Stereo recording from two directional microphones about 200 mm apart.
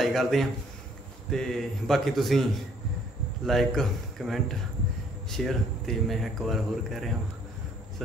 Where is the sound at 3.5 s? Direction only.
Centre (ahead or behind).